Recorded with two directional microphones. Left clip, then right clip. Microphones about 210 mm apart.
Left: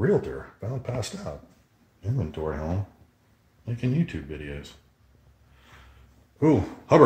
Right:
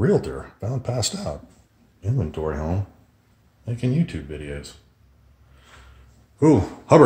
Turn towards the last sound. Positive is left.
turn(degrees=-10)  # may be behind; listen again after turning